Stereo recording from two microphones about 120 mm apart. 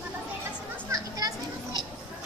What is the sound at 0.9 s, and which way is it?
Children playing, 30° right (ahead or behind).